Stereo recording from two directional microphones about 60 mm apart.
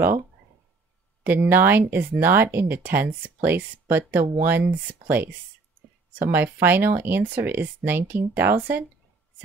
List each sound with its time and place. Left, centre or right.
1.2 s speech: right